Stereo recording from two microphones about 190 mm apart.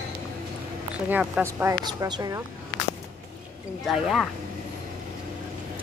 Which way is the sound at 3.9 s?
Centre (ahead or behind).